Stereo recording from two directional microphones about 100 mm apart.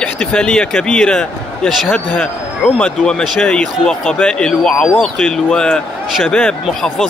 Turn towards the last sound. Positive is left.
turn(degrees=5)  # may be behind; listen again after turning